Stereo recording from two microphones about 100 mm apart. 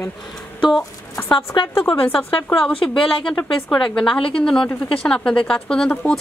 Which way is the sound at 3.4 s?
5° left (ahead or behind).